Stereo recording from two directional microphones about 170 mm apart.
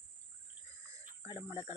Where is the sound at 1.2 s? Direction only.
15° right (ahead or behind).